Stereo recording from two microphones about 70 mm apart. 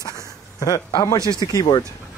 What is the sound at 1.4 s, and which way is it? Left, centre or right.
Speech, left.